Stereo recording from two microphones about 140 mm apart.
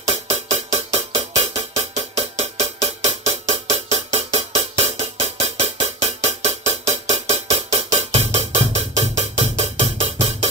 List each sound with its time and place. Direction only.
0.1 s music: 50° right (ahead or behind)